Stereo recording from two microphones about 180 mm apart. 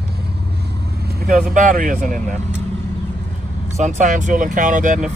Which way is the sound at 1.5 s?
45° right (ahead or behind).